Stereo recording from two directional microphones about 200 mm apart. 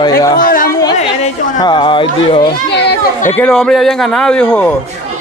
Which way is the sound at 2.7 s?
55° left (ahead or behind).